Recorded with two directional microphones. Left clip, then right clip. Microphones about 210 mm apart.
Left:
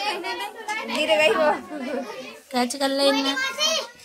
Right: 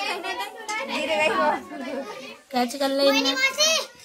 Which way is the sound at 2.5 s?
10° left (ahead or behind).